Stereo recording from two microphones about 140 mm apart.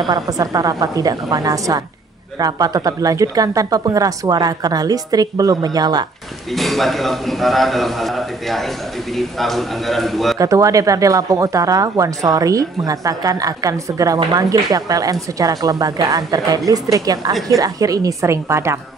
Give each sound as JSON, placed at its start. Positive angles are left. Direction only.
{"t": 0.1, "sound": "speech", "side_deg": -25}
{"t": 6.5, "sound": "a man's voice", "side_deg": 0}
{"t": 10.4, "sound": "speech", "side_deg": -25}